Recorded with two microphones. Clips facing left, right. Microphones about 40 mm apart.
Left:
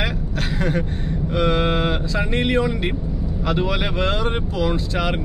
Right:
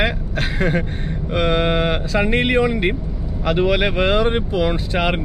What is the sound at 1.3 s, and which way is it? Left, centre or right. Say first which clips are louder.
Speech: right 2 dB; centre.